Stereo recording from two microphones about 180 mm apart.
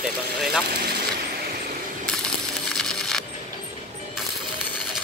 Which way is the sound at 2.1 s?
5° left (ahead or behind).